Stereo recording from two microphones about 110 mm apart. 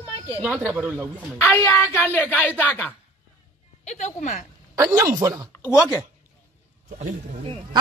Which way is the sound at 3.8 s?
90° left.